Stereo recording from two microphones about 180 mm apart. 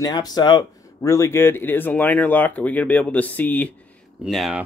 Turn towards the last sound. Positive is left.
turn(degrees=0)  # may be behind; listen again after turning